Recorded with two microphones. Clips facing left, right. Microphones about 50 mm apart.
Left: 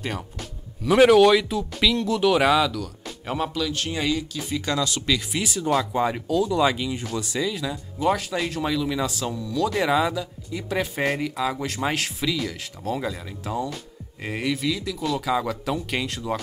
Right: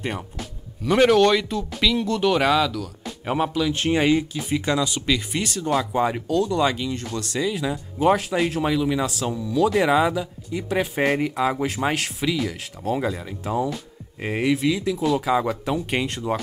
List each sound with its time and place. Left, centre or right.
0.8 s speech: centre
3.3 s speech: centre
3.7 s speech: right; by 5.4 s centre
5.4 s speech: centre
7.6 s speech: right
8.2 s speech: centre
11.1 s speech: right
16.3 s speech: right